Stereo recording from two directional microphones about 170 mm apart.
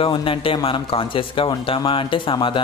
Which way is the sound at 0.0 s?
30° left (ahead or behind).